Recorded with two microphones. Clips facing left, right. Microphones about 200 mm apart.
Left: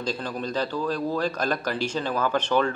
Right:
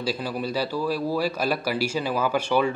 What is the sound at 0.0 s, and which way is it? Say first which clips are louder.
A man's voice: right 2 dB; 10° right (ahead or behind).